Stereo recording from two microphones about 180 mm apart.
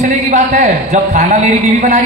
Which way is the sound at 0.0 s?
45° right (ahead or behind).